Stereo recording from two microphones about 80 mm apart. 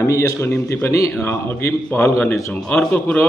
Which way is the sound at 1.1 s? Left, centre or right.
Left.